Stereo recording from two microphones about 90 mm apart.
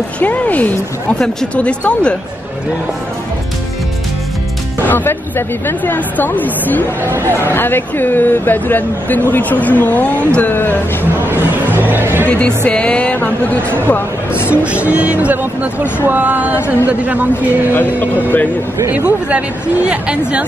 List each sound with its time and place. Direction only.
0.2 s speech: 20° left (ahead or behind)
4.8 s speech: 20° left (ahead or behind)
7.0 s a man's voice: 25° right (ahead or behind)
7.3 s speech: 25° left (ahead or behind)
11.5 s music: 20° right (ahead or behind)
12.3 s speech: 15° left (ahead or behind)
13.6 s a man's voice: 25° right (ahead or behind)
13.8 s speech: 25° left (ahead or behind)
14.5 s a man's voice: 15° right (ahead or behind)
17.7 s speech: 20° left (ahead or behind)
18.9 s speech: 20° right (ahead or behind)